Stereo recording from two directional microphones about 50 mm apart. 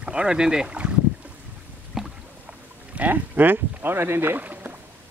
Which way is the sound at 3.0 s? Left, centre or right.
Right.